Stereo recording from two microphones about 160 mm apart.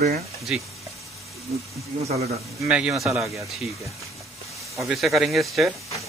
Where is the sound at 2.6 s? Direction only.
5° right (ahead or behind).